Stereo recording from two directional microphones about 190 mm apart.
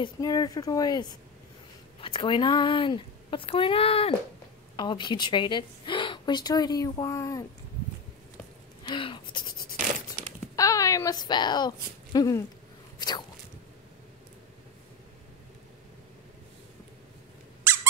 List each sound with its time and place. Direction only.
0.0 s speech: 20° left (ahead or behind)
8.8 s a sound: 25° left (ahead or behind)
10.5 s a woman's voice: 15° left (ahead or behind)